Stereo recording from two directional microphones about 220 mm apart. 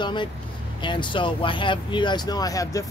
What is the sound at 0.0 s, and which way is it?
Speech, 20° left (ahead or behind).